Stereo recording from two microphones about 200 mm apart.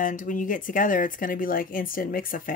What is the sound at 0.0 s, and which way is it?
Speech, 40° left (ahead or behind).